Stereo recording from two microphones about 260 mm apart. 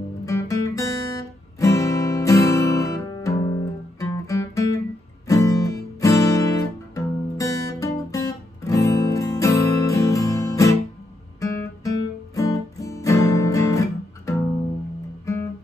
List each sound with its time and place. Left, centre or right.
0.2 s guitar: centre
4.0 s music: centre
5.3 s guitar: centre